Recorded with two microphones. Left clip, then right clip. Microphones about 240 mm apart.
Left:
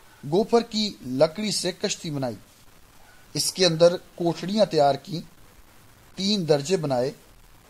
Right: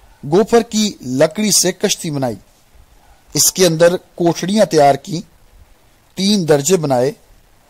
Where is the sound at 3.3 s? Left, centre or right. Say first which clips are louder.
Right 9 dB; right.